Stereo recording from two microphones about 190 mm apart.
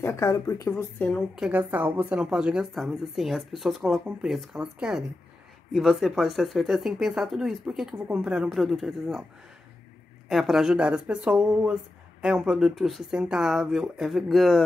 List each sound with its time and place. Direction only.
0.0 s speech: 15° left (ahead or behind)
1.3 s speech: 5° right (ahead or behind)
10.2 s speech: centre (ahead or behind)